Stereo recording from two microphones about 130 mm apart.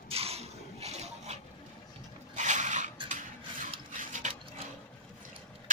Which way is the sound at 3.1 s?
85° right.